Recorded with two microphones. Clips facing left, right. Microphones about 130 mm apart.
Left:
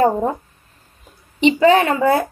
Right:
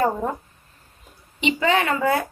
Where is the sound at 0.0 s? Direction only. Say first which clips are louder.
Left 6 dB; 30° left (ahead or behind).